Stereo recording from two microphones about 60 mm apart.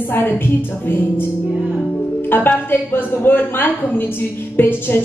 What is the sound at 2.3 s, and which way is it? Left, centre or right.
A woman's voice, left.